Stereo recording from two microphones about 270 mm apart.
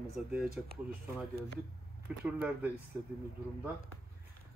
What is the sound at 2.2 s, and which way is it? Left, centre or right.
Speech, centre.